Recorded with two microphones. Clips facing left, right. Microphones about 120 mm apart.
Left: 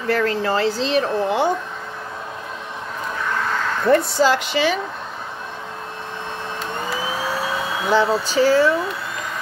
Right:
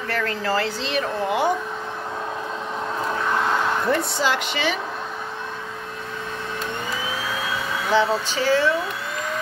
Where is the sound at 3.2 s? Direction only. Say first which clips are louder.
Right 1 dB; 20° right (ahead or behind).